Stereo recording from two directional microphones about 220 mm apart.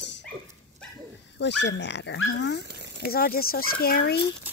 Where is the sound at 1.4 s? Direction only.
50° left (ahead or behind).